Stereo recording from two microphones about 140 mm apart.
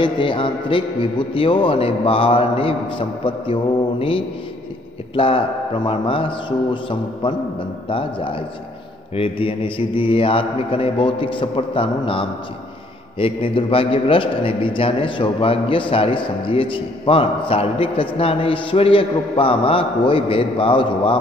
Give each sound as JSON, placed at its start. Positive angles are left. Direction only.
{"t": 0.0, "sound": "a man's voice", "side_deg": 35}
{"t": 5.1, "sound": "a man's voice", "side_deg": 40}